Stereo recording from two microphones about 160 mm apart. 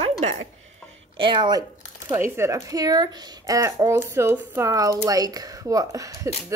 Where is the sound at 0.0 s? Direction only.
45° right (ahead or behind).